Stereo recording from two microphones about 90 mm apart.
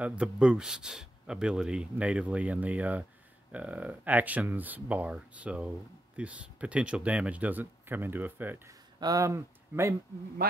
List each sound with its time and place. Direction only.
0.0 s speech: 10° right (ahead or behind)
9.0 s speech: 35° right (ahead or behind)